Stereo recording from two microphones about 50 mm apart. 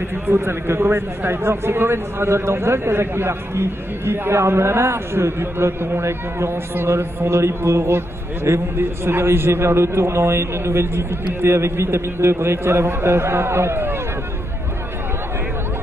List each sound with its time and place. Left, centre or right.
0.1 s a man's voice: right